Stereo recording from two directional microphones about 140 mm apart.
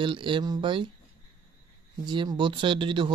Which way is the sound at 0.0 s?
35° right (ahead or behind).